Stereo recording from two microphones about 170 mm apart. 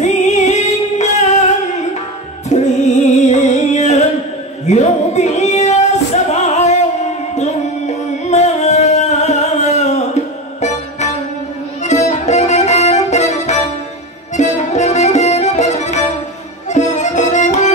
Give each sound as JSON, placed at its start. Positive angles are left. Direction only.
{"t": 0.0, "sound": "music", "side_deg": 40}
{"t": 2.5, "sound": "music", "side_deg": 45}
{"t": 4.6, "sound": "female singing", "side_deg": 40}
{"t": 7.3, "sound": "music", "side_deg": 40}